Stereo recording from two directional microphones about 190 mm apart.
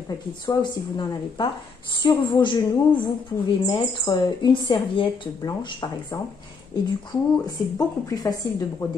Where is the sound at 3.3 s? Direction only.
15° left (ahead or behind).